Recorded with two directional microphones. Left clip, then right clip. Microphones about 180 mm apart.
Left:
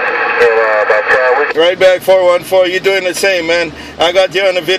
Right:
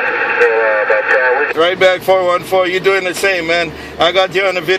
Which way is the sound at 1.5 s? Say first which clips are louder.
Left 3 dB; 30° left (ahead or behind).